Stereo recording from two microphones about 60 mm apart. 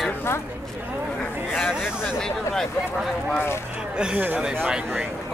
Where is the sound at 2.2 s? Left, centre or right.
Centre.